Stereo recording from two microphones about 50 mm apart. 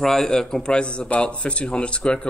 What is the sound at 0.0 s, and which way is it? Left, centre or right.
Speech, centre.